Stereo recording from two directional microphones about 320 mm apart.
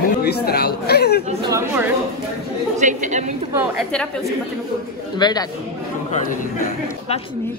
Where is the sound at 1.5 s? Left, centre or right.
Centre.